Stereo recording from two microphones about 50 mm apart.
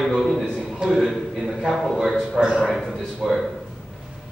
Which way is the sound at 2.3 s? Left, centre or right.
Centre.